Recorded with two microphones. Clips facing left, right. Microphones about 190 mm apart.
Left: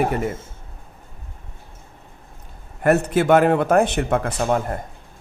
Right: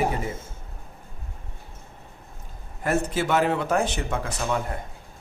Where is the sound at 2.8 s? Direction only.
60° left (ahead or behind).